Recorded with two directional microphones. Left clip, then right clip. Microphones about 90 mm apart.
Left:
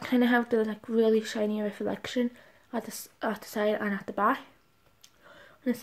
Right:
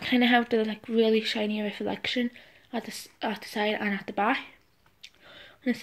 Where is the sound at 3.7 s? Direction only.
20° left (ahead or behind).